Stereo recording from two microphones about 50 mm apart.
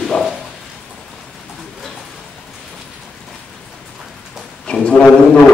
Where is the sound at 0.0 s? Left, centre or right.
Centre.